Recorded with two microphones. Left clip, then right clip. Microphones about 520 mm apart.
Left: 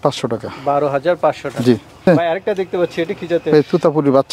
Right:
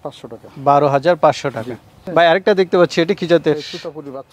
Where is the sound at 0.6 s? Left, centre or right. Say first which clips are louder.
Right 3 dB; right.